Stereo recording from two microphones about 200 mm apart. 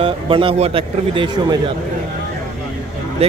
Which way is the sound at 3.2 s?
30° right (ahead or behind).